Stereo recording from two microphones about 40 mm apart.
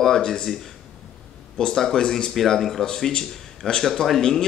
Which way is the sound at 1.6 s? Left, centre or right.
Centre.